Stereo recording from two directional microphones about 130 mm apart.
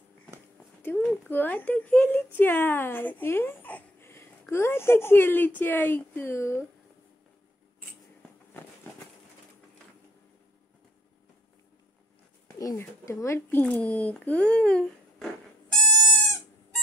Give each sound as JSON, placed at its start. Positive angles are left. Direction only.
{"t": 0.8, "sound": "speech", "side_deg": 10}
{"t": 12.5, "sound": "speech", "side_deg": 25}
{"t": 15.8, "sound": "goat", "side_deg": 5}